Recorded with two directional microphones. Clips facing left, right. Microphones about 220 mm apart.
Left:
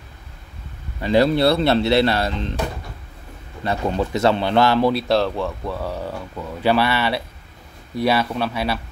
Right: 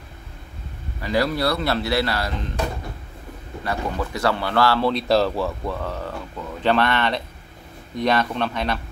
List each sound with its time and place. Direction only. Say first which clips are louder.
1.0 s speech: left 6 dB; 25° left (ahead or behind)
3.6 s speech: left 4 dB; 25° left (ahead or behind)
4.9 s speech: even; centre (ahead or behind)
5.8 s speech: left 2 dB; 10° left (ahead or behind)